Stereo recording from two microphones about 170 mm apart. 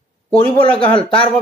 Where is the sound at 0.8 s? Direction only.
30° left (ahead or behind).